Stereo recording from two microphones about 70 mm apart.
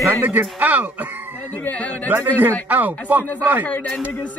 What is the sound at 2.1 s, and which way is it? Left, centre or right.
Speech, right.